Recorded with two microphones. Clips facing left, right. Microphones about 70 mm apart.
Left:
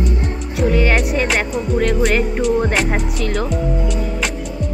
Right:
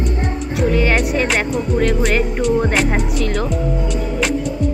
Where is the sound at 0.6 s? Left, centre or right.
Centre.